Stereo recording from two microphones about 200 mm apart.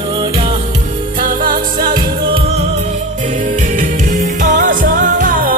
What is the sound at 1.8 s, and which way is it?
Music, 25° right (ahead or behind).